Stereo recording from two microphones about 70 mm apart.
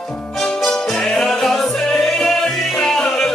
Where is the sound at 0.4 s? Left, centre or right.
Centre.